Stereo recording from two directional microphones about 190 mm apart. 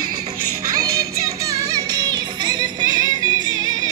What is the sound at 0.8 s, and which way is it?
Music, 15° right (ahead or behind).